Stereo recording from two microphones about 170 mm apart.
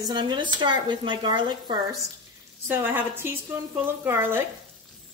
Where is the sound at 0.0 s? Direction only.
25° right (ahead or behind).